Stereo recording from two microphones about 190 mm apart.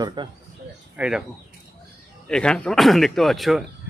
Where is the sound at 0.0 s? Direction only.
25° right (ahead or behind).